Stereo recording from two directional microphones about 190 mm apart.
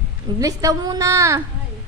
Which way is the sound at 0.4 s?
15° right (ahead or behind).